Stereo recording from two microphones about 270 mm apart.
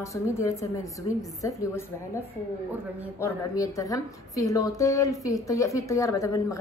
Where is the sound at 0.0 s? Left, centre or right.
Centre.